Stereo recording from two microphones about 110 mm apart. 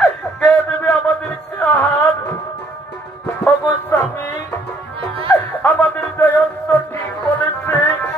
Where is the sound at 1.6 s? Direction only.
15° left (ahead or behind).